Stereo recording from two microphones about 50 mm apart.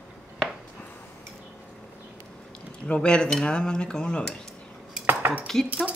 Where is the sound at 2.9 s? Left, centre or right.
Centre.